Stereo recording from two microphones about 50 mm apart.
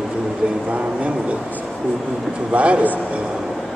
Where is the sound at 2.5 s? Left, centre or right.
Right.